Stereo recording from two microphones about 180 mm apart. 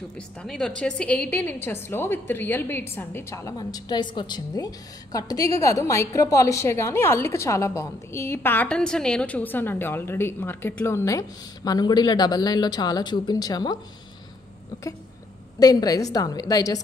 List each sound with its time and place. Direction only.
0.4 s a woman's voice: 5° left (ahead or behind); by 13.7 s 20° left (ahead or behind)
15.6 s a woman's voice: 20° left (ahead or behind)